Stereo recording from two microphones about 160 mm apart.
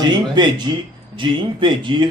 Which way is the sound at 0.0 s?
30° right (ahead or behind).